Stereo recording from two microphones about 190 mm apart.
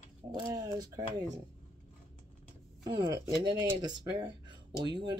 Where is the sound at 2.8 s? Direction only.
20° right (ahead or behind).